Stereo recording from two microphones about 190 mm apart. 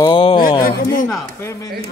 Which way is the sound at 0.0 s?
30° left (ahead or behind).